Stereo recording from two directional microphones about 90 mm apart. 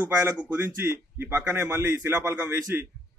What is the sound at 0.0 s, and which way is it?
Speech, 15° right (ahead or behind).